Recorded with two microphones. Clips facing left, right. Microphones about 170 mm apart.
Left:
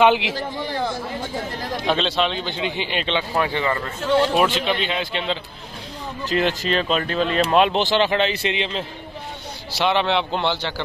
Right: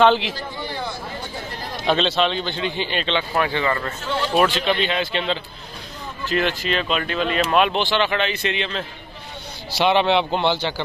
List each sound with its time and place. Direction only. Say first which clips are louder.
0.0 s speech: even; 15° left (ahead or behind)
0.6 s a sound: left 4 dB; 90° left
1.9 s speech: right 2 dB; centre (ahead or behind); by 3.8 s 20° left (ahead or behind)
4.4 s speech: right 1 dB; 10° left (ahead or behind)
6.2 s speech: left 1 dB; 35° left (ahead or behind)
9.8 s a man's voice: right 3 dB; 5° right (ahead or behind)